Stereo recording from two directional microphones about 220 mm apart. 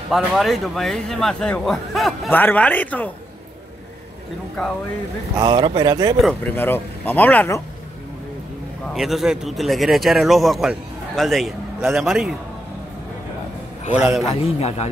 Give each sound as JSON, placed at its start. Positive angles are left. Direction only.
{"t": 0.1, "sound": "a man's voice", "side_deg": 0}
{"t": 5.3, "sound": "speech", "side_deg": -20}
{"t": 6.2, "sound": "speech", "side_deg": 10}
{"t": 8.9, "sound": "a man's voice", "side_deg": 0}
{"t": 13.9, "sound": "a man's voice", "side_deg": -5}
{"t": 14.2, "sound": "a man's voice", "side_deg": 30}